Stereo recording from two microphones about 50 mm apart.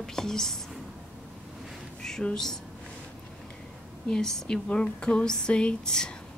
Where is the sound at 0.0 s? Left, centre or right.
Centre.